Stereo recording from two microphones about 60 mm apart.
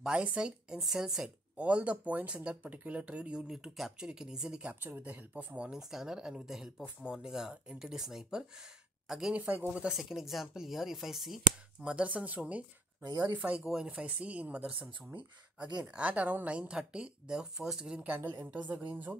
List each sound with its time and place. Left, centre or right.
0.0 s speech: centre
1.6 s speech: right
5.0 s speech: right
5.7 s speech: centre
9.4 s speech: right
9.7 s speech: centre
11.8 s speech: right
16.1 s speech: right
16.5 s speech: centre
18.0 s speech: right